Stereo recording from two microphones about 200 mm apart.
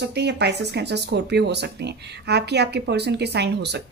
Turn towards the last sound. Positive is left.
turn(degrees=-55)  # may be behind; listen again after turning